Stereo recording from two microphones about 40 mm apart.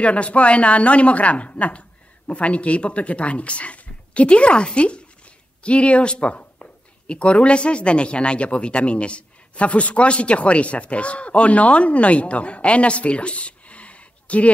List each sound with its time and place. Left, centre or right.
0.0 s a woman's voice: left